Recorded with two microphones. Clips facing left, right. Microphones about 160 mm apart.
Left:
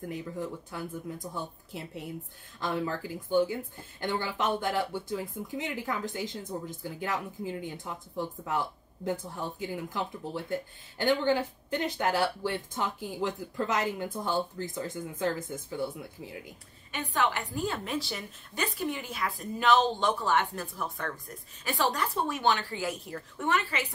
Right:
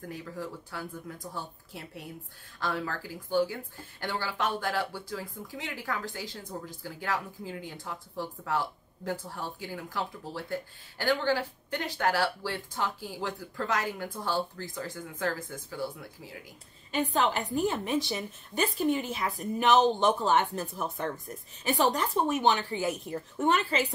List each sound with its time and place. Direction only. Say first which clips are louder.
0.0 s speech: left 3 dB; 20° left (ahead or behind)
16.9 s speech: right 3 dB; 25° right (ahead or behind)